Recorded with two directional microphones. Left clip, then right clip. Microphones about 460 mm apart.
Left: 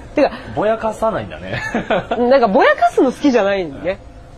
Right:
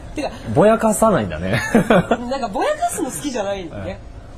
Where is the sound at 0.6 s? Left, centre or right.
Right.